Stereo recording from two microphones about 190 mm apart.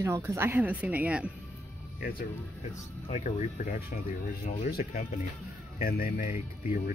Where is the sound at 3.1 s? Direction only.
40° left (ahead or behind).